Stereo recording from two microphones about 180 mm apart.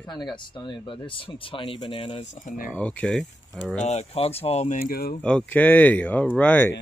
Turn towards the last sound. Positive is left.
turn(degrees=10)  # may be behind; listen again after turning